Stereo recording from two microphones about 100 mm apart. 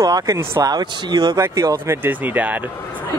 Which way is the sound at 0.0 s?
35° right (ahead or behind).